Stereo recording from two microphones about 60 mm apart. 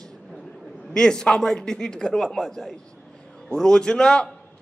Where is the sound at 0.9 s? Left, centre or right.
Centre.